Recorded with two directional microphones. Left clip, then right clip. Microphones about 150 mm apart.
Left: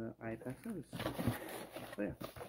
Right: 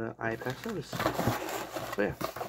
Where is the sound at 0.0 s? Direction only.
15° left (ahead or behind).